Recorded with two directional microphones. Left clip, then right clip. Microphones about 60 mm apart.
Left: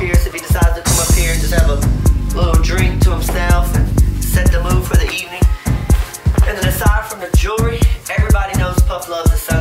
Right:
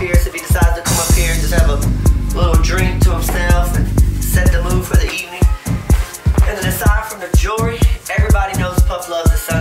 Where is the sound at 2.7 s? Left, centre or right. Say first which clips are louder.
Right 1 dB; centre.